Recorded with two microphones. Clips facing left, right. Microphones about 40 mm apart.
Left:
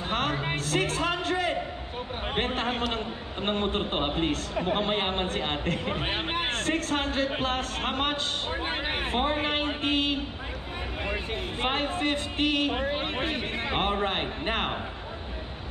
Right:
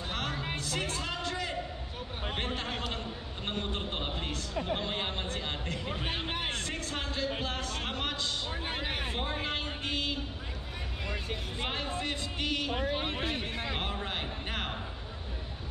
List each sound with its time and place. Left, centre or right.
0.1 s music: left
2.3 s a man's voice: left